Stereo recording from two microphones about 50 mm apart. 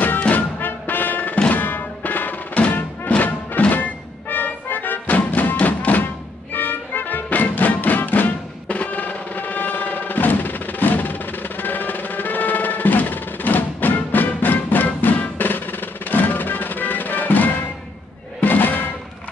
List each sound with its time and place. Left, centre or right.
0.3 s music: left